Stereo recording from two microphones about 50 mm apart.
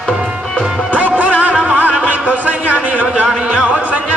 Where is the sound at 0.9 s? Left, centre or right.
Right.